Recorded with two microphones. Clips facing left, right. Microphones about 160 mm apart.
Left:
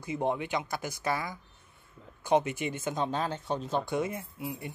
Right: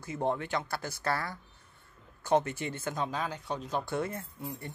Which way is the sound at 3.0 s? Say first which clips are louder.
Left 4 dB; 30° left (ahead or behind).